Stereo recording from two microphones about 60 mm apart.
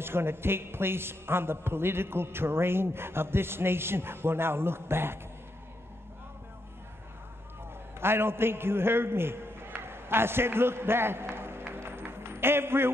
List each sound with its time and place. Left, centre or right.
0.0 s a man's voice: right
8.0 s a man's voice: right
9.8 s a sound: right